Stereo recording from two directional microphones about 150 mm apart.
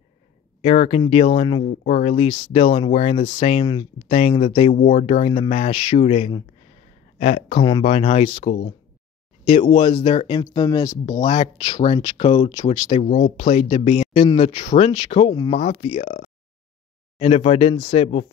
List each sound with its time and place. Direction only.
0.6 s speech: 40° left (ahead or behind)
1.7 s speech: 50° left (ahead or behind); by 4.1 s 30° left (ahead or behind)
4.1 s speech: 40° left (ahead or behind)
4.7 s speech: 60° left (ahead or behind)
5.0 s speech: 40° left (ahead or behind)
13.0 s speech: 55° left (ahead or behind)
17.2 s speech: 40° left (ahead or behind)